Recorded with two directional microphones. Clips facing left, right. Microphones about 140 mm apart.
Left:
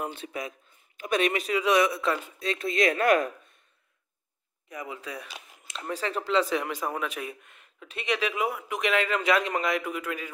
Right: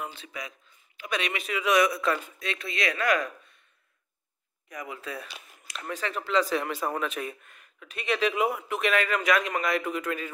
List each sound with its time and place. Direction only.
0.0 s a man's voice: 55° left (ahead or behind); by 2.1 s 25° left (ahead or behind)
2.3 s speech: 35° left (ahead or behind)
4.6 s speech: 25° left (ahead or behind)
6.5 s speech: 15° left (ahead or behind)
7.5 s speech: 20° left (ahead or behind)
8.2 s speech: 5° left (ahead or behind)
8.6 s speech: 15° left (ahead or behind)
9.7 s speech: 10° left (ahead or behind)